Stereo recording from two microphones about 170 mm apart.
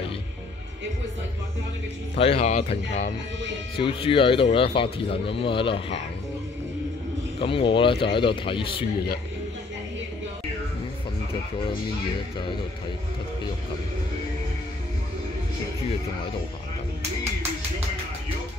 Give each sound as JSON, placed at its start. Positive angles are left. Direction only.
{"t": 2.1, "sound": "speech", "side_deg": 35}
{"t": 3.7, "sound": "speech", "side_deg": 30}
{"t": 7.3, "sound": "speech", "side_deg": 30}